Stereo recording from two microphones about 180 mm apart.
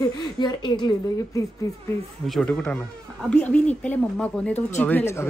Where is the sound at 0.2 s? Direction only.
25° left (ahead or behind).